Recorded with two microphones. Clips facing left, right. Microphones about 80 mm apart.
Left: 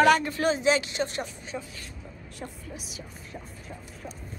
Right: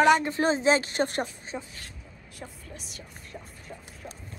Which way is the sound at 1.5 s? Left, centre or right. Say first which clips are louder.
Even; centre.